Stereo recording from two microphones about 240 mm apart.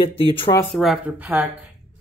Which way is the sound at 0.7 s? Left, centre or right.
Centre.